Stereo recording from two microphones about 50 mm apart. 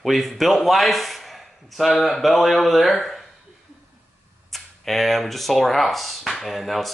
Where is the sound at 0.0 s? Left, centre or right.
Centre.